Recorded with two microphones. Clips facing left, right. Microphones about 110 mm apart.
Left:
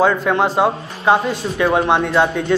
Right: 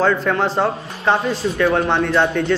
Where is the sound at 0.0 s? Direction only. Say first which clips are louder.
Left 2 dB; 10° left (ahead or behind).